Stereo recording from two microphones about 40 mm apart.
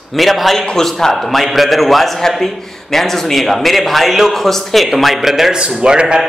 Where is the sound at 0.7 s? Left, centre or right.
Centre.